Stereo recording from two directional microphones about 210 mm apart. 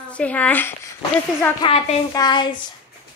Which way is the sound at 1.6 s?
25° left (ahead or behind).